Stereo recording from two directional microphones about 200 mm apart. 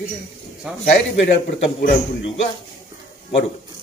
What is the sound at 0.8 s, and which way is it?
A man's voice, 35° left (ahead or behind).